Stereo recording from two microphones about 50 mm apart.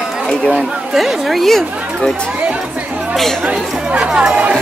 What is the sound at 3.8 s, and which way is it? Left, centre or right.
Speech, centre.